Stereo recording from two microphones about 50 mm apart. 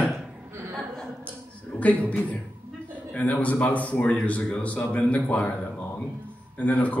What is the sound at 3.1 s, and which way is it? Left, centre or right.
Speech, left.